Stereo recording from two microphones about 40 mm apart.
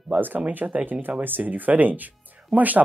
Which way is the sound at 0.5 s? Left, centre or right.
Right.